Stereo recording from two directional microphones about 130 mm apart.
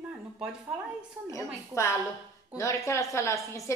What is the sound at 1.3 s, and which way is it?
A woman's voice, 25° left (ahead or behind).